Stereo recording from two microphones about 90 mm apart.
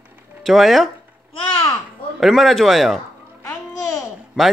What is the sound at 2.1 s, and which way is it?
Speech, centre (ahead or behind).